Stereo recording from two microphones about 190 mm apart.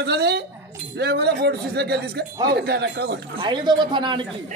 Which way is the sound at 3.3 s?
25° right (ahead or behind).